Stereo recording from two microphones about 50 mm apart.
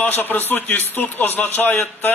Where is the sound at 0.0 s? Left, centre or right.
Left.